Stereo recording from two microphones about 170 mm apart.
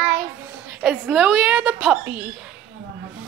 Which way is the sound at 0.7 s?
5° right (ahead or behind).